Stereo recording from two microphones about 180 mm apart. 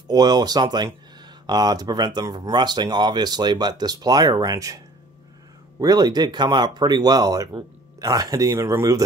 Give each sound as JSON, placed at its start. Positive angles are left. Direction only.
{"t": 0.1, "sound": "speech", "side_deg": -20}
{"t": 5.8, "sound": "speech", "side_deg": -20}